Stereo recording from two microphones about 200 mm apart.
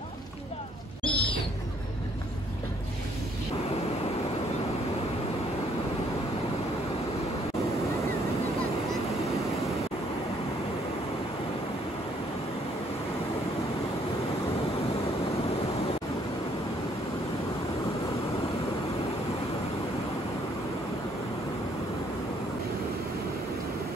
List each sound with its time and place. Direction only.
1.0 s owl: 25° left (ahead or behind)